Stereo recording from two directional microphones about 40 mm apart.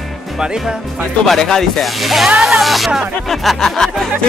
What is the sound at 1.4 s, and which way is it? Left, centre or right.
Speech, centre.